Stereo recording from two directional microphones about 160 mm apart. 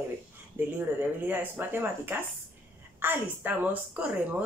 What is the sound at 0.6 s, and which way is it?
A woman's voice, 10° right (ahead or behind).